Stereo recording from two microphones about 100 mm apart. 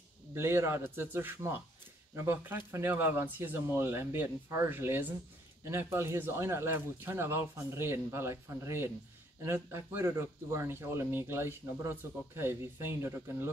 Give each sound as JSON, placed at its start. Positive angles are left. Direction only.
{"t": 0.3, "sound": "speech", "side_deg": -25}